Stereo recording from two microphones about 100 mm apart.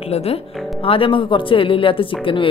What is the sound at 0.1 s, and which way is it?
Speech, 90° left.